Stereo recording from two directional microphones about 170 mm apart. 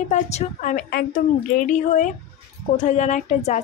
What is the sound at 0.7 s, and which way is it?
A woman's voice, 55° left (ahead or behind).